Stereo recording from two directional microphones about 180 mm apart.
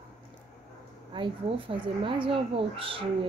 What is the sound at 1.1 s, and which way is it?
Speech, 30° right (ahead or behind).